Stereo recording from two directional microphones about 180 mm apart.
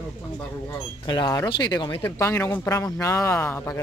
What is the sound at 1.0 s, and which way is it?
Speech, 25° left (ahead or behind).